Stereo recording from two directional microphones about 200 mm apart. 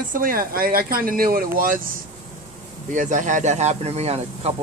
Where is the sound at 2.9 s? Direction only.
40° right (ahead or behind).